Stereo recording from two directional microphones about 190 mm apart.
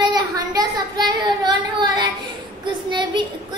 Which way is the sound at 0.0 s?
20° right (ahead or behind).